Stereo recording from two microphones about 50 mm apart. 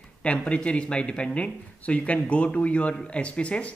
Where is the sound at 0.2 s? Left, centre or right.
Left.